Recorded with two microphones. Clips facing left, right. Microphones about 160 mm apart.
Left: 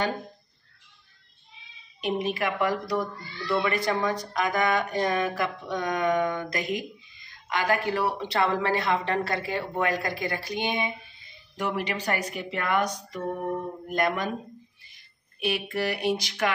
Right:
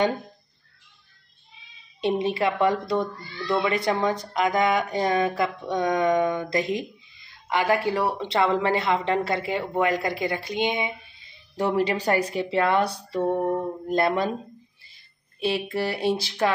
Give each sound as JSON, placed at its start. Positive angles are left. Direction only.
{"t": 2.1, "sound": "speech", "side_deg": -25}
{"t": 11.5, "sound": "a woman's voice", "side_deg": -35}
{"t": 15.9, "sound": "speech", "side_deg": 15}